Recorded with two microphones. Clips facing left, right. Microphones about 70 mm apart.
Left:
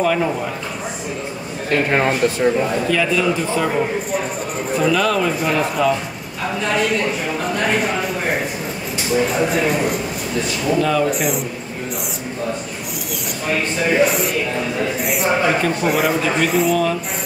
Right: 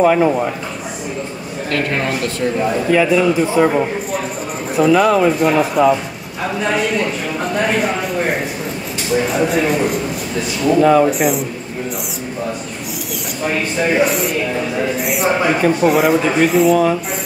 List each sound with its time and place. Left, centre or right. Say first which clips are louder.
0.0 s a man's voice: right 6 dB; right
1.7 s a man's voice: left 2 dB; centre
2.9 s a man's voice: right 8 dB; centre
4.9 s a man's voice: right 8 dB; centre
5.4 s a man's voice: right 5 dB; centre
10.8 s a man's voice: right 8 dB; right
11.1 s speech: right 4 dB; centre
13.5 s speech: right 1 dB; centre
16.7 s a man's voice: right 4 dB; centre